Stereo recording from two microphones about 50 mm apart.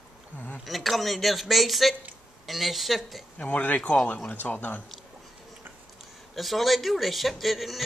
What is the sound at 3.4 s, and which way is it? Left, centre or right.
Speech, left.